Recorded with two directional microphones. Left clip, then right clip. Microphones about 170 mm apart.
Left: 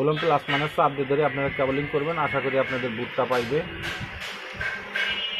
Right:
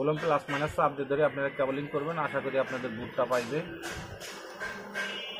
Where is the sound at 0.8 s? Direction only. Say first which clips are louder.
Left 4 dB; 80° left; by 2.2 s 65° left (ahead or behind).